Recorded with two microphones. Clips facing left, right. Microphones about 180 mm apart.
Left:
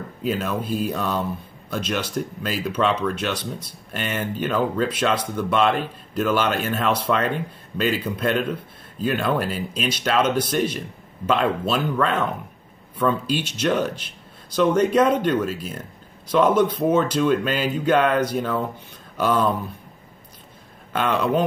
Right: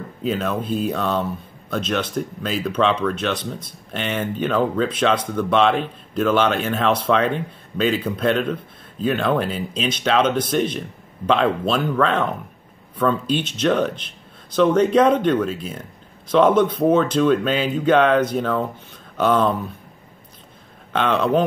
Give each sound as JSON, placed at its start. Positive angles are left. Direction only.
{"t": 0.2, "sound": "a man's voice", "side_deg": 5}
{"t": 20.9, "sound": "a man's voice", "side_deg": 10}